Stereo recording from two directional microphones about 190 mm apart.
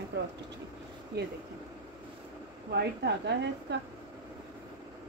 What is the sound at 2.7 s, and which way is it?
A woman's voice, 60° right (ahead or behind).